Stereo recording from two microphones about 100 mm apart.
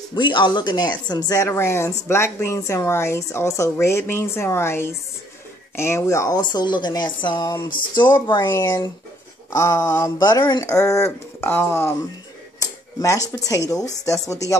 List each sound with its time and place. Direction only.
0.1 s speech: 50° left (ahead or behind)
1.5 s speech: 30° left (ahead or behind); by 8.4 s 50° left (ahead or behind)
8.4 s speech: 25° left (ahead or behind)
10.1 s speech: 40° left (ahead or behind)
10.6 s speech: 30° left (ahead or behind)
12.5 s a sound: 35° left (ahead or behind)
13.9 s speech: 35° left (ahead or behind)